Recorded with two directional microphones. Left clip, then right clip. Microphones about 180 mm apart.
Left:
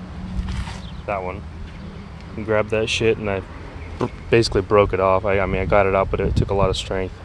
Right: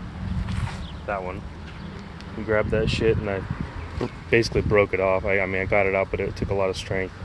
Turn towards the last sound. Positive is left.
turn(degrees=20)  # may be behind; listen again after turning